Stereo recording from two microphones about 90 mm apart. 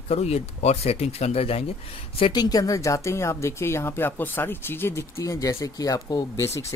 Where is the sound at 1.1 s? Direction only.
90° left.